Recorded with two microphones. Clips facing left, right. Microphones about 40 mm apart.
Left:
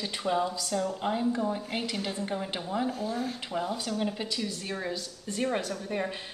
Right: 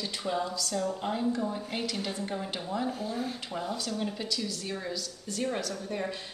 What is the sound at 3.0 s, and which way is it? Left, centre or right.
Speech, centre.